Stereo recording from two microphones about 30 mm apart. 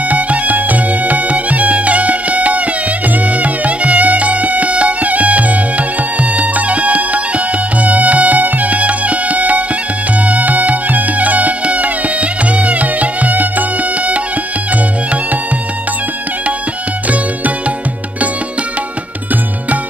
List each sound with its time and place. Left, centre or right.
0.1 s music: right
5.0 s music: right